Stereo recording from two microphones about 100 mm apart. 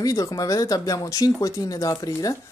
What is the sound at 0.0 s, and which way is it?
Speech, 35° left (ahead or behind).